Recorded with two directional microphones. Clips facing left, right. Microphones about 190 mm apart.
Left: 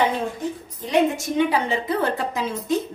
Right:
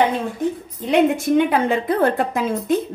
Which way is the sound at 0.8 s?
60° right (ahead or behind).